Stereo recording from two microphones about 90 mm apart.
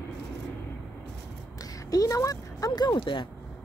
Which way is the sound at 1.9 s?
40° left (ahead or behind).